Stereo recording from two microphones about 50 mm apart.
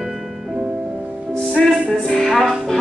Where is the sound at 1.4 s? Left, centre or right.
Centre.